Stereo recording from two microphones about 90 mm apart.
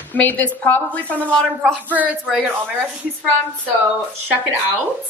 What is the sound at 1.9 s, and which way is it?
Speech, 20° right (ahead or behind).